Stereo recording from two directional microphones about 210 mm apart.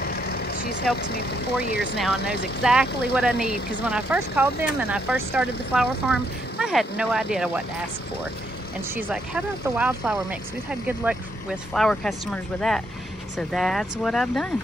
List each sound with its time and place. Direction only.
0.0 s vehicle: 45° left (ahead or behind)
0.9 s speech: 50° left (ahead or behind)
2.6 s speech: 5° right (ahead or behind)
8.9 s speech: 5° right (ahead or behind)